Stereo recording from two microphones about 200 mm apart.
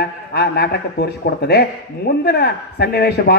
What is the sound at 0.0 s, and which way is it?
A man's voice, 55° left (ahead or behind).